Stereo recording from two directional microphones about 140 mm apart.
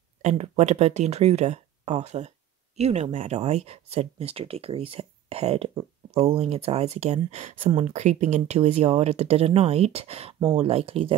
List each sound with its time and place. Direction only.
0.2 s speech: 50° right (ahead or behind)